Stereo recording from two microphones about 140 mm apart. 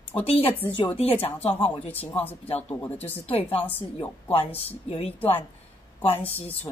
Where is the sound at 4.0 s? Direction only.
40° left (ahead or behind).